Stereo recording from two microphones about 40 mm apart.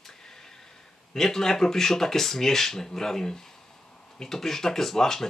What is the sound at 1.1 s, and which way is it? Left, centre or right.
Speech, centre.